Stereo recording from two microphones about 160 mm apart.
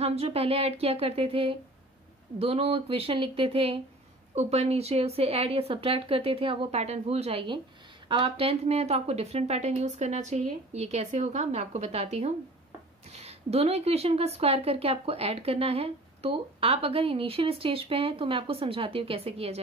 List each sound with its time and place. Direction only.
0.0 s speech: 40° right (ahead or behind)